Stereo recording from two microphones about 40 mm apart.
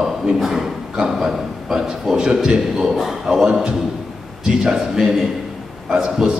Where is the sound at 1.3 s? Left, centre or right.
Centre.